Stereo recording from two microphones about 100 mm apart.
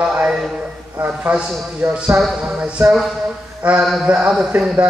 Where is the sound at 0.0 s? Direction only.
10° right (ahead or behind).